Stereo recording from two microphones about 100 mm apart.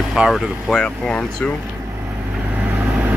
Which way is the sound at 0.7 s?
5° left (ahead or behind).